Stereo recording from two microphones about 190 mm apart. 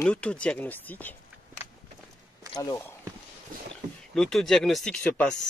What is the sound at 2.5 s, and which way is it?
Speech, 20° left (ahead or behind).